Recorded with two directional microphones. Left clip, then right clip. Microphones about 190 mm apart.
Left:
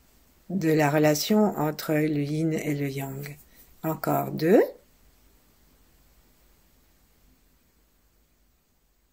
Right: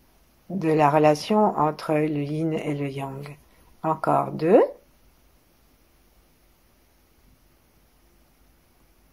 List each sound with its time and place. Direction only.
0.6 s speech: 50° left (ahead or behind)